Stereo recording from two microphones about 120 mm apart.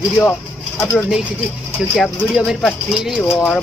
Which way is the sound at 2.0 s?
Centre (ahead or behind).